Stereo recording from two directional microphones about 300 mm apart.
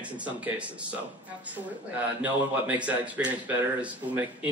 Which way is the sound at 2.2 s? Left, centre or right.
Centre.